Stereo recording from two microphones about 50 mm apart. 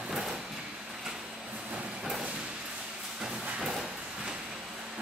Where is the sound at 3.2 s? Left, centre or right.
Centre.